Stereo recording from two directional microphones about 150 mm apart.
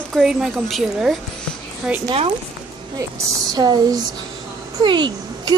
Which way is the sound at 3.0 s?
25° right (ahead or behind).